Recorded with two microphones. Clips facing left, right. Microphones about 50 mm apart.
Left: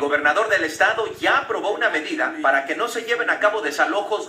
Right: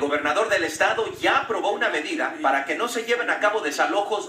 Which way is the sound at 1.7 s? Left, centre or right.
Left.